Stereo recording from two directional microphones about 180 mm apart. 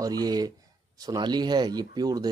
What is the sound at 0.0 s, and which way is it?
Speech, 20° right (ahead or behind).